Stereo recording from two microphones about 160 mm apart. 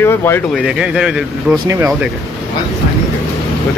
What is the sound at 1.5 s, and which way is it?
Speech, 20° right (ahead or behind).